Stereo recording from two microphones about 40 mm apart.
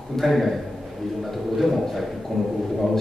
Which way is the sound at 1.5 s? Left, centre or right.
Centre.